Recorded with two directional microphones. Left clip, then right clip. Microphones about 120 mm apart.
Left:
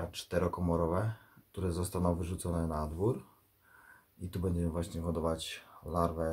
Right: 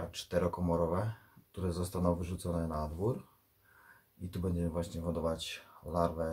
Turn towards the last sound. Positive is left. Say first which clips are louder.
# even
turn(degrees=25)  # may be behind; listen again after turning